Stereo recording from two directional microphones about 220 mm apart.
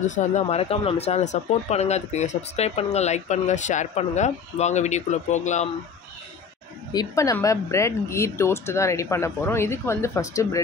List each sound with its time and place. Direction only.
0.0 s speech: 35° left (ahead or behind)
6.9 s speech: 15° left (ahead or behind)